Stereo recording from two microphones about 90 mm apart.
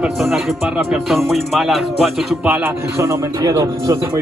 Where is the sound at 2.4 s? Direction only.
20° right (ahead or behind).